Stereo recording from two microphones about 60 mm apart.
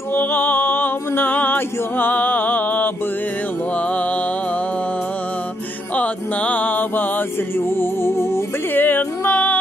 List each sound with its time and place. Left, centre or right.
0.1 s music: left
5.9 s mantra: left
8.7 s music: left